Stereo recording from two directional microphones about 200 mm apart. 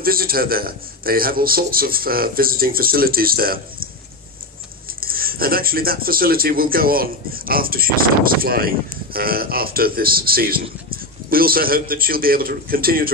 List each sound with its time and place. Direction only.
0.0 s speech: 45° right (ahead or behind)
5.0 s speech: 45° right (ahead or behind)